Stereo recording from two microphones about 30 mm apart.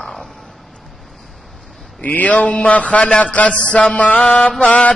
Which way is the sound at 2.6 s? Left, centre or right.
Left.